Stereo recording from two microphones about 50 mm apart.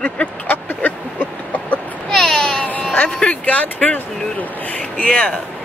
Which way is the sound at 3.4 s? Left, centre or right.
Left.